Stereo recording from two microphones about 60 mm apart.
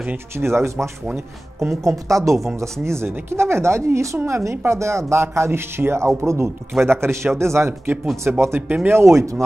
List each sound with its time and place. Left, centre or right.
0.4 s speech: right
2.6 s speech: right